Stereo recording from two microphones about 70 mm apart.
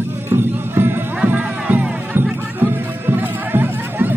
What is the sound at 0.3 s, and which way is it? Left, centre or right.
Music, right.